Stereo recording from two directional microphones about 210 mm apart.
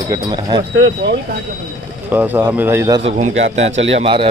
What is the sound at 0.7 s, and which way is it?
Speech, 70° right (ahead or behind).